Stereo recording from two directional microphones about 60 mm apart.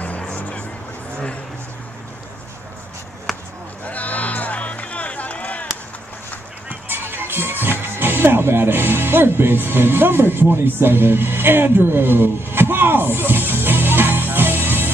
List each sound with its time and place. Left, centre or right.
0.0 s music: left
3.3 s basketball bounce: centre
3.8 s music: left
6.9 s music: right
7.9 s speech: right
13.3 s music: right